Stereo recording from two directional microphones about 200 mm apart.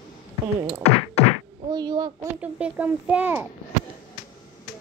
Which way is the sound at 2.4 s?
5° right (ahead or behind).